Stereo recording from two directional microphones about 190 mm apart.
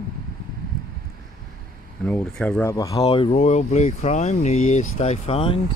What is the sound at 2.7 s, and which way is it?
Speech, 20° left (ahead or behind).